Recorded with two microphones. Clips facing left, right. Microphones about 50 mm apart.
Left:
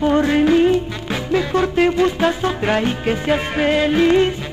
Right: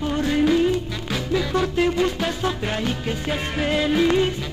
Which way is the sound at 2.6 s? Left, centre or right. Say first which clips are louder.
Left 7 dB; left.